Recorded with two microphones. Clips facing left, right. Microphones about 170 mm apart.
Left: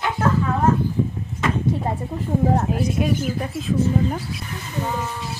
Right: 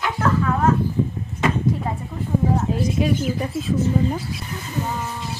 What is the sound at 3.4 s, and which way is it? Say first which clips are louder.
Speech: even; centre (ahead or behind).